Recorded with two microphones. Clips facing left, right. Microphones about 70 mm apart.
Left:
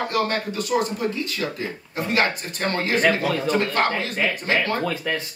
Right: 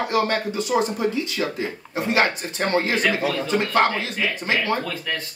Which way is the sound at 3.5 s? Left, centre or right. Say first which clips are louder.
Right 1 dB; left.